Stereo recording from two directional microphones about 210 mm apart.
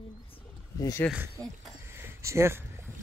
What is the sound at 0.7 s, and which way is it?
Speech, 15° left (ahead or behind).